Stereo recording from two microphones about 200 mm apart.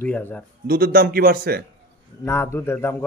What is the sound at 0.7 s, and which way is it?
Speech, 50° right (ahead or behind).